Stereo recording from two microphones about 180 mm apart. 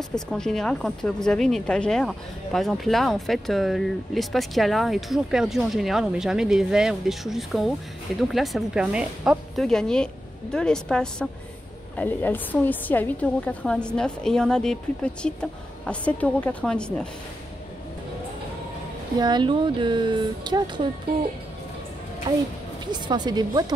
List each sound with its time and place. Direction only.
0.1 s a woman's voice: 5° left (ahead or behind)
19.1 s speech: 25° right (ahead or behind)
22.3 s speech: 25° right (ahead or behind)